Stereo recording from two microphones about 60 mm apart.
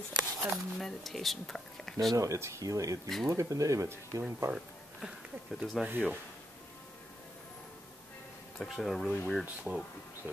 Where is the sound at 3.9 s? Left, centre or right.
Right.